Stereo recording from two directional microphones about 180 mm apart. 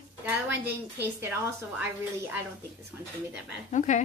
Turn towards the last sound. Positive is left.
turn(degrees=40)  # may be behind; listen again after turning